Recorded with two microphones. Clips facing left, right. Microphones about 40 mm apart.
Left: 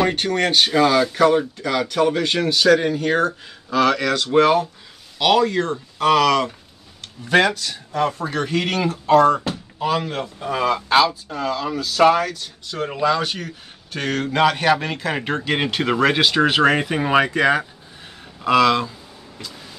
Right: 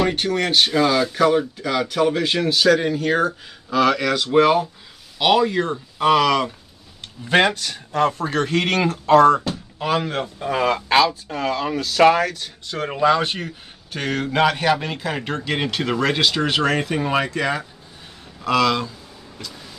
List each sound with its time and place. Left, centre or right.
0.1 s speech: centre
7.2 s speech: right
7.5 s speech: right
10.2 s speech: right
11.3 s speech: right
13.9 s a man's voice: centre; by 17.6 s left
18.4 s a man's voice: centre
19.3 s vehicle: centre